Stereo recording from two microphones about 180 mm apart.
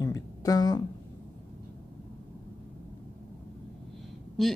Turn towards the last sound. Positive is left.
turn(degrees=0)  # may be behind; listen again after turning